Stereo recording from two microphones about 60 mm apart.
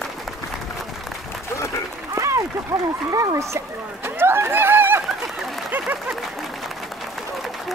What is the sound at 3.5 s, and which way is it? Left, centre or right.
Speech, right.